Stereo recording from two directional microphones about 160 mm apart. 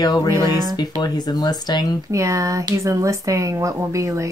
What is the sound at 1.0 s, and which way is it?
Speech, 25° left (ahead or behind).